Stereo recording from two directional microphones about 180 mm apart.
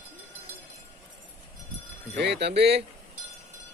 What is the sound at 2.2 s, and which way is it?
Speech, 70° right (ahead or behind).